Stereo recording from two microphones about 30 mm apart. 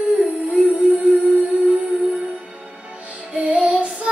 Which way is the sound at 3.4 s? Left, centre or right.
Right.